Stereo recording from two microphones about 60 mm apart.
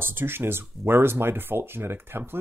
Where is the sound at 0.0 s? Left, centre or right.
Right.